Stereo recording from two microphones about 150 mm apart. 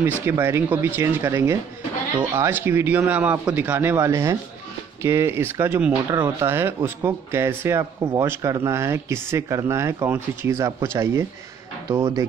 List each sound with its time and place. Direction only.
0.0 s speech: 15° right (ahead or behind)